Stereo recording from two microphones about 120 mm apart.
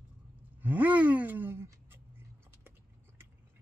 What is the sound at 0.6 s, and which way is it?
Gasp, 15° right (ahead or behind).